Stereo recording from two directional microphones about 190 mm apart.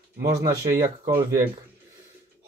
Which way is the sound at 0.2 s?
15° right (ahead or behind).